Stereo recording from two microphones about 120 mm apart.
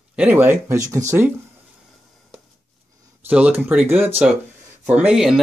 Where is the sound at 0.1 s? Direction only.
15° right (ahead or behind).